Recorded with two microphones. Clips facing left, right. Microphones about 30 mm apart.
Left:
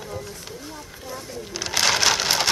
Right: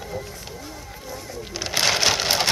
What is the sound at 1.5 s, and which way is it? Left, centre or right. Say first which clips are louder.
Speech: even; centre.